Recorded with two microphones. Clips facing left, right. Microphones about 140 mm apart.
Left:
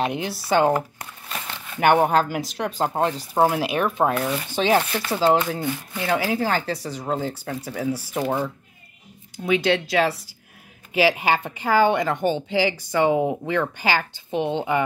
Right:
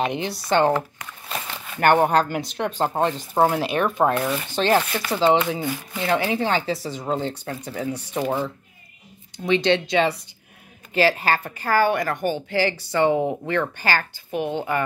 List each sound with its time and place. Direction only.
0.0 s speech: 5° left (ahead or behind)
9.4 s speech: 5° left (ahead or behind)
10.9 s a woman's voice: 10° left (ahead or behind)